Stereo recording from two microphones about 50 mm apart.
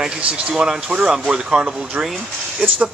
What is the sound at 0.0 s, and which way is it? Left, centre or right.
Speech, centre.